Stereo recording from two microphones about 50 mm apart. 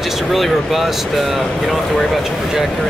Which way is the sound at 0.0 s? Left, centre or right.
Centre.